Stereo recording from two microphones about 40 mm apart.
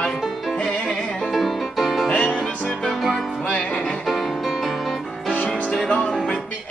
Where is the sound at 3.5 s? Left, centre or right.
Left.